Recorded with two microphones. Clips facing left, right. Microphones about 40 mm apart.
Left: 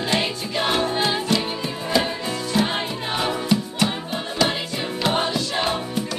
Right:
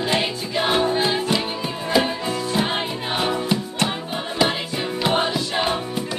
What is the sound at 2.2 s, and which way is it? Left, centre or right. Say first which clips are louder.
Music: even; centre.